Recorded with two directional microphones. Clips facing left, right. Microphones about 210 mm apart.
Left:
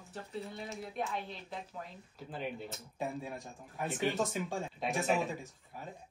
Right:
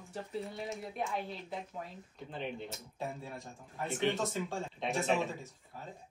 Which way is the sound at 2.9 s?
15° left (ahead or behind).